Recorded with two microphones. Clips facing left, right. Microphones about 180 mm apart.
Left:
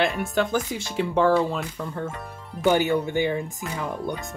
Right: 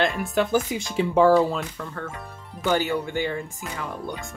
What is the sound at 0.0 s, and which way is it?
Speech, centre (ahead or behind).